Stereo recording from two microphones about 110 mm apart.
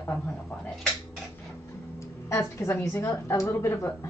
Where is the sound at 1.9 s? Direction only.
25° left (ahead or behind).